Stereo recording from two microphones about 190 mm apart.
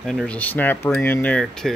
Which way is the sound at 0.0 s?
Centre (ahead or behind).